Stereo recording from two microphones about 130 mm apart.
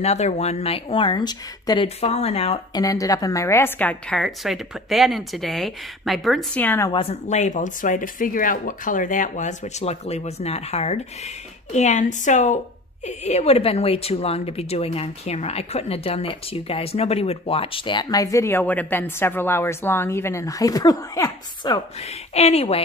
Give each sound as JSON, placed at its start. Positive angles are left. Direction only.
{"t": 0.0, "sound": "a woman's voice", "side_deg": 55}
{"t": 2.0, "sound": "a woman's voice", "side_deg": 55}
{"t": 2.7, "sound": "a woman's voice", "side_deg": 25}
{"t": 4.2, "sound": "speech", "side_deg": 0}
{"t": 6.5, "sound": "a woman's voice", "side_deg": 15}
{"t": 6.9, "sound": "speech", "side_deg": 45}
{"t": 11.7, "sound": "speech", "side_deg": 65}
{"t": 13.0, "sound": "a woman's voice", "side_deg": 60}
{"t": 22.3, "sound": "a woman's voice", "side_deg": 55}